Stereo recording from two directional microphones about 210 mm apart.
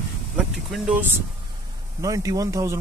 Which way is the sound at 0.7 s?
5° right (ahead or behind).